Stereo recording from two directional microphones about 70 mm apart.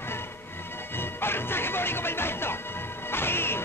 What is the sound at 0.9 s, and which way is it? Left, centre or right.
Speech, left.